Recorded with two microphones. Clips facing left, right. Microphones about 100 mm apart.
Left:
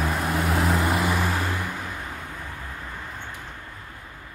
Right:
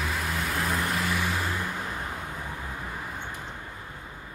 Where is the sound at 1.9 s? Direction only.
15° right (ahead or behind).